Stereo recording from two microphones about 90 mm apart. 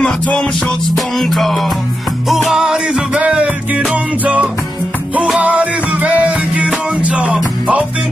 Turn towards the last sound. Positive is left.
turn(degrees=-15)  # may be behind; listen again after turning